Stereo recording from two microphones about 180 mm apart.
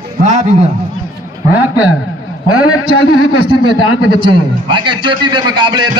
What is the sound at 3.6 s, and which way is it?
A man's voice, 25° right (ahead or behind).